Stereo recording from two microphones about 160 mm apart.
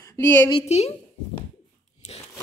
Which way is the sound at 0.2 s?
15° left (ahead or behind).